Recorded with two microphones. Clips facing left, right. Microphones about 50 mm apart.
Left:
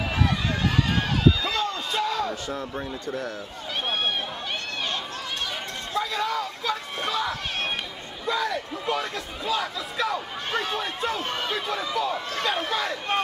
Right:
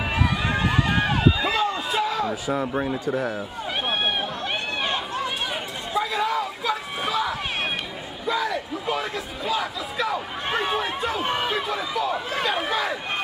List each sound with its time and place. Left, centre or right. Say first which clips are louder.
0.1 s run: right 3 dB; centre
1.6 s a sound: right 3 dB; centre
2.7 s a man's voice: right 6 dB; right
4.8 s run: right 5 dB; centre
5.9 s a sound: right 3 dB; centre
8.3 s speech: right 1 dB; centre